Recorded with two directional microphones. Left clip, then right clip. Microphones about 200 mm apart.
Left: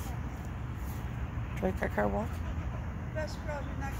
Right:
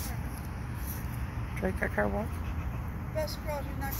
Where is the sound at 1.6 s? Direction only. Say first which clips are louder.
Right 1 dB; 10° left (ahead or behind).